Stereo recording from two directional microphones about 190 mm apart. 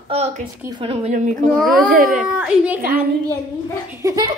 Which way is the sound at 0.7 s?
30° right (ahead or behind).